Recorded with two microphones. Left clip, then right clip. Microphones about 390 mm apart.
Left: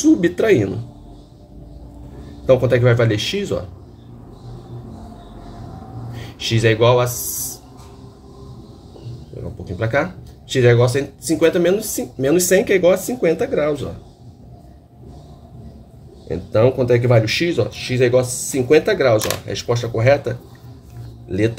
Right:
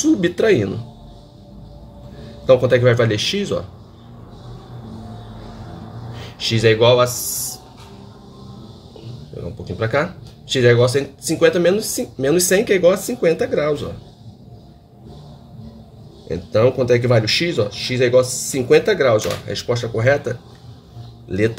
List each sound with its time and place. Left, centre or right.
0.0 s speech: centre
2.4 s speech: centre
6.3 s speech: centre
9.8 s speech: centre
16.3 s speech: centre